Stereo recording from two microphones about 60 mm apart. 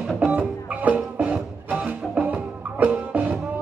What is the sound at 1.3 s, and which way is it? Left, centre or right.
Music, centre.